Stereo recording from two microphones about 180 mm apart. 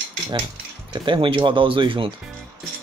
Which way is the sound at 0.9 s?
25° right (ahead or behind).